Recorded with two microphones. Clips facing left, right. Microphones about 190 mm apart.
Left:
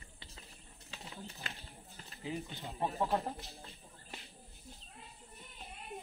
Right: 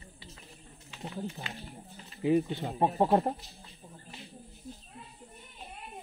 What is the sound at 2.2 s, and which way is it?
Speech, 60° right (ahead or behind).